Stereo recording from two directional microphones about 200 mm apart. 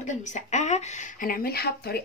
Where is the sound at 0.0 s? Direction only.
35° left (ahead or behind).